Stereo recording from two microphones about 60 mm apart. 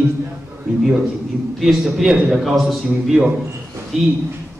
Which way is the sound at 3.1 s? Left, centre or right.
Centre.